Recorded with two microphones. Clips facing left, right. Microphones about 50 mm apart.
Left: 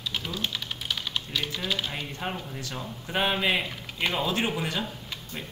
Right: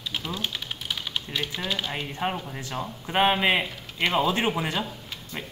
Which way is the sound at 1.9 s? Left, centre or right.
Centre.